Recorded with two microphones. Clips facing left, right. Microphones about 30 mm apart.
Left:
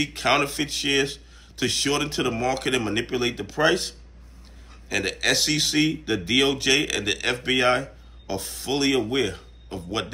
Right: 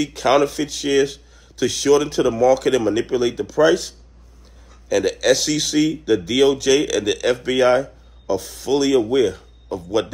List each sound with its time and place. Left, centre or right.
0.0 s speech: left